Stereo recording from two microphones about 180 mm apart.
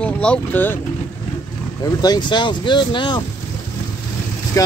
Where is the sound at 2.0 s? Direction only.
25° left (ahead or behind).